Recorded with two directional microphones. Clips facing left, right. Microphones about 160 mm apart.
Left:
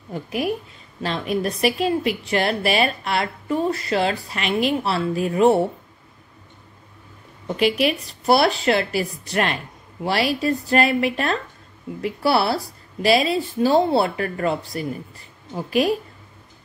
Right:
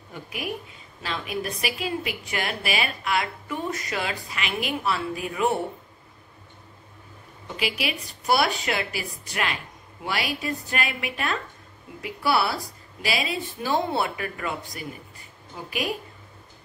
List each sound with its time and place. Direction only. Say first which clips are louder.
0.1 s a woman's voice: left 9 dB; 40° left (ahead or behind)
7.7 s a woman's voice: left 9 dB; 35° left (ahead or behind)